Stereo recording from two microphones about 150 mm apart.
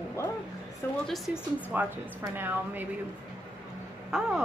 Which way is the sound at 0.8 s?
15° left (ahead or behind).